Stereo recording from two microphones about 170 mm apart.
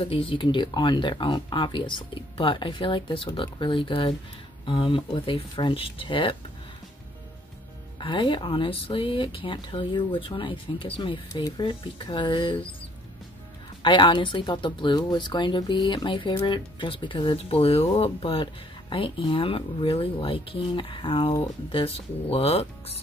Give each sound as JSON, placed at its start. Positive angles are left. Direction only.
{"t": 0.0, "sound": "speech", "side_deg": 35}
{"t": 8.0, "sound": "speech", "side_deg": 30}
{"t": 13.8, "sound": "speech", "side_deg": 30}